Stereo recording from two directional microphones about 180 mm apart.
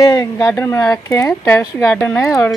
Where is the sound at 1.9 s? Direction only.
5° left (ahead or behind).